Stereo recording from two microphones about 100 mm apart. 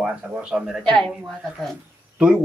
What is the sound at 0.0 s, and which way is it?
Speech, 10° right (ahead or behind).